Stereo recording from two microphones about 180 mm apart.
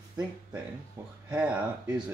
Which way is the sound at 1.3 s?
5° right (ahead or behind).